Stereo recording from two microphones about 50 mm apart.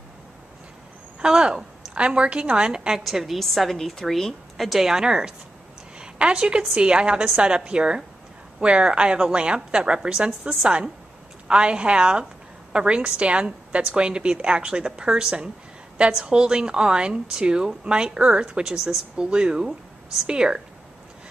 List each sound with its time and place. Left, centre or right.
1.2 s a woman's voice: centre
3.0 s a woman's voice: centre
5.9 s a sound: right
6.6 s a woman's voice: right